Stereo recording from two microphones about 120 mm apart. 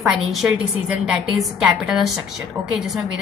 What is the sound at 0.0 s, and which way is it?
A woman's voice, 5° right (ahead or behind).